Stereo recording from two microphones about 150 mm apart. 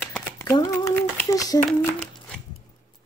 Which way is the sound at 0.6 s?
25° left (ahead or behind).